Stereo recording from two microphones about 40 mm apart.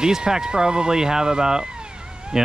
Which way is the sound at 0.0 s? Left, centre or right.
Centre.